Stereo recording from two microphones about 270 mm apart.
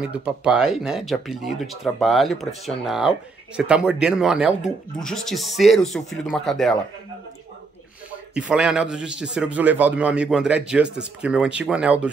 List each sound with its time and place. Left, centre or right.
0.0 s speech: centre
8.4 s speech: centre